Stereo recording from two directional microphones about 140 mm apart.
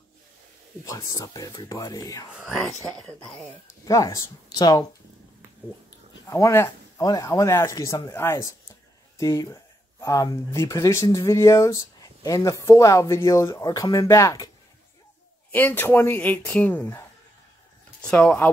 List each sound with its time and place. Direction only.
0.8 s speech: 25° left (ahead or behind)
2.9 s speech: 5° left (ahead or behind)
3.8 s speech: 25° left (ahead or behind)
6.2 s speech: 20° left (ahead or behind)
15.5 s speech: 15° left (ahead or behind)
18.0 s speech: 10° left (ahead or behind)